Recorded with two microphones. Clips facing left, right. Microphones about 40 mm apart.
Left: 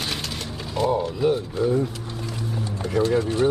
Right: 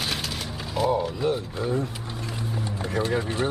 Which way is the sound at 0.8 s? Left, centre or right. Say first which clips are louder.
Left 2 dB; centre.